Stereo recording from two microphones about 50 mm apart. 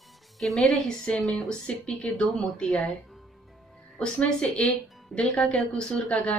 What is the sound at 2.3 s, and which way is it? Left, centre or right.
Speech, centre.